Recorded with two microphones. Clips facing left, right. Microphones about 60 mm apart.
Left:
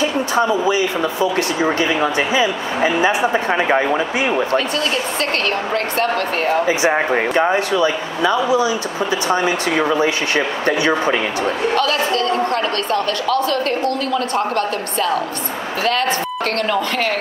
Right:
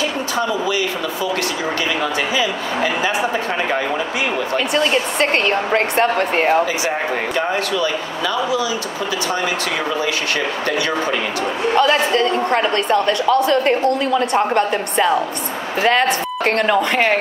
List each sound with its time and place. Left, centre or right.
0.4 s speech: left
4.7 s a woman's voice: right
6.6 s speech: left
11.4 s a woman's voice: right